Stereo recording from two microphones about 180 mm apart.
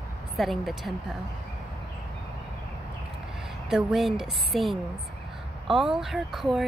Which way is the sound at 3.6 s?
Centre (ahead or behind).